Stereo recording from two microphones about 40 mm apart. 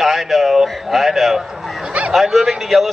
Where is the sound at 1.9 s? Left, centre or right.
Right.